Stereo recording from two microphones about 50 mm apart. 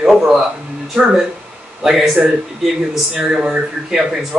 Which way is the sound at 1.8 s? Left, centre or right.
Centre.